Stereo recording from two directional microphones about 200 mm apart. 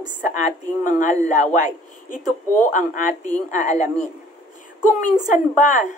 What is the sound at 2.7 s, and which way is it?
A woman's voice, 40° left (ahead or behind).